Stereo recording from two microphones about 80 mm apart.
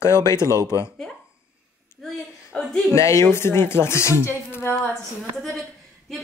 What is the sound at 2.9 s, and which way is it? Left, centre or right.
Speech, left.